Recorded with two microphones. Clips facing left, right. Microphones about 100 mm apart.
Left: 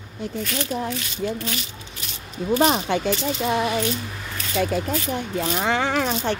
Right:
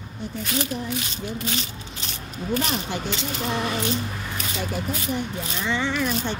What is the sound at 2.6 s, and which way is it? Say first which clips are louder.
Speech: left 8 dB; 75° left (ahead or behind).